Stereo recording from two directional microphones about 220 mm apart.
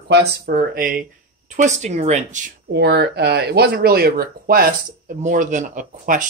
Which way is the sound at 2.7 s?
50° right (ahead or behind).